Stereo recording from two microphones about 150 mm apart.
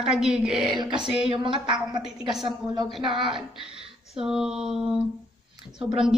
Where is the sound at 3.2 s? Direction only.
35° right (ahead or behind).